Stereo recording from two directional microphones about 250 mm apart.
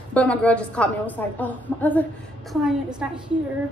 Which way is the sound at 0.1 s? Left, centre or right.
Centre.